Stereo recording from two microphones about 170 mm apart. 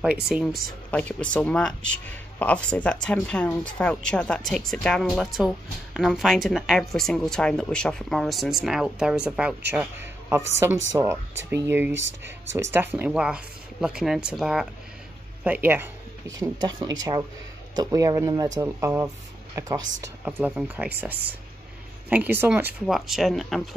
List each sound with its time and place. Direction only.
0.0 s speech: 5° right (ahead or behind)
0.9 s speech: 5° left (ahead or behind); by 11.9 s 15° right (ahead or behind)
11.9 s speech: 90° right
12.7 s speech: 10° right (ahead or behind)
16.3 s speech: 25° right (ahead or behind)
20.2 s speech: 10° right (ahead or behind)